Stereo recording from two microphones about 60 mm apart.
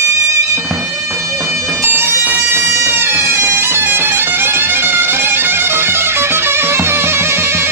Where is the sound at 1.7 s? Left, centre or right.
Right.